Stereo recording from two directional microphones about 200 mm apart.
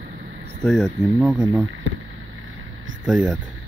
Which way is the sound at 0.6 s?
Centre (ahead or behind).